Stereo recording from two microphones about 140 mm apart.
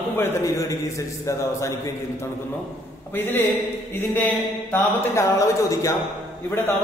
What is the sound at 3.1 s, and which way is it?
Speech, 15° left (ahead or behind).